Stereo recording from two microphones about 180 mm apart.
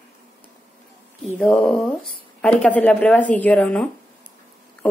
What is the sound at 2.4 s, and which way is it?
Speech, 5° left (ahead or behind).